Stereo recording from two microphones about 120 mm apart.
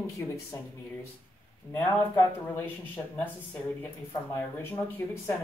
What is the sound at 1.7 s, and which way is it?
Speech, 15° left (ahead or behind).